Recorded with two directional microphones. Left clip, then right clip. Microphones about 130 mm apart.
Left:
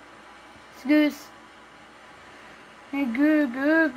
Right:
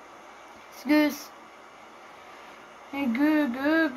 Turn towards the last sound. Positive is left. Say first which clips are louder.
# left 3 dB
turn(degrees=55)  # may be behind; listen again after turning